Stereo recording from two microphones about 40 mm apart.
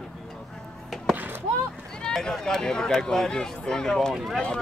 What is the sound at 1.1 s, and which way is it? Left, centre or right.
Chop, right.